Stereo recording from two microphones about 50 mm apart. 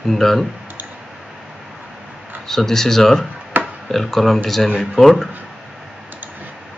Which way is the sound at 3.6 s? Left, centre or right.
Right.